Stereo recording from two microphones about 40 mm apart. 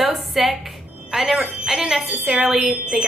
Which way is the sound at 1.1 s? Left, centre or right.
Centre.